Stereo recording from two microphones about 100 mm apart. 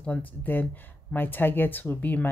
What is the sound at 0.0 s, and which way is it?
Speech, 15° left (ahead or behind).